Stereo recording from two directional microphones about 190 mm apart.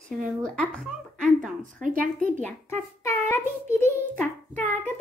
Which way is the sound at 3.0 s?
15° left (ahead or behind).